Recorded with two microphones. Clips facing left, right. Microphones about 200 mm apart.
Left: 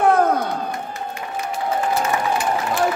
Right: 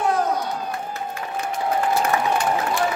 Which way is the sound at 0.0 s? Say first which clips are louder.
Left 5 dB; 55° left (ahead or behind).